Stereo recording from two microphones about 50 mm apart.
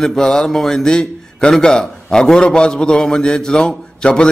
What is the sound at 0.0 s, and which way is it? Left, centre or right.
A man's voice, centre.